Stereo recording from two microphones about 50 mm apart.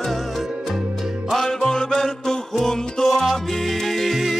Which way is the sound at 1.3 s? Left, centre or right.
Centre.